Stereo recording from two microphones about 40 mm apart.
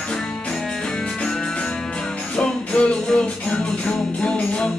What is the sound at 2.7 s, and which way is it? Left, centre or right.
Music, left.